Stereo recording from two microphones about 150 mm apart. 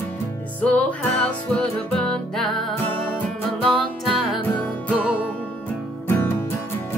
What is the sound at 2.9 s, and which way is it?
Music, 15° left (ahead or behind).